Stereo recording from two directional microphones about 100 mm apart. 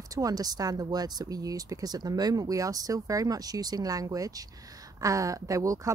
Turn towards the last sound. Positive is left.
turn(degrees=-35)  # may be behind; listen again after turning